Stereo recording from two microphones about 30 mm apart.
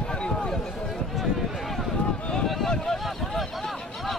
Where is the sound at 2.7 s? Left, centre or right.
Centre.